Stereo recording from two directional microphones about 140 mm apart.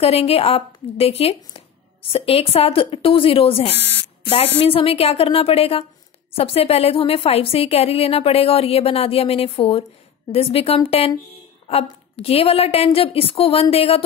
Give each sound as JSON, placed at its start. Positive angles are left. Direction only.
{"t": 0.0, "sound": "a woman's voice", "side_deg": 45}